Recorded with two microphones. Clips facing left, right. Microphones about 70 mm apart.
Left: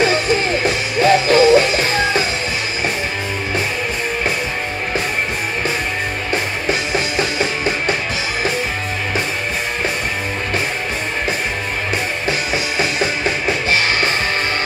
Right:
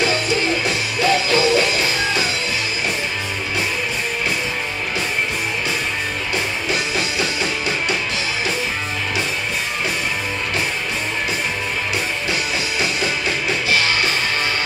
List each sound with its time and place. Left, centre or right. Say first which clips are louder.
1.0 s music: left 6 dB; left